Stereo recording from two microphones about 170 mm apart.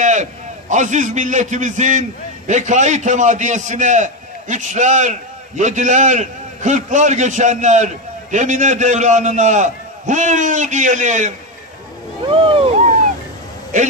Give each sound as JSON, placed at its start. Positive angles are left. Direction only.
{"t": 0.0, "sound": "a man's voice", "side_deg": -45}
{"t": 12.3, "sound": "speech", "side_deg": -30}
{"t": 13.7, "sound": "a man's voice", "side_deg": -50}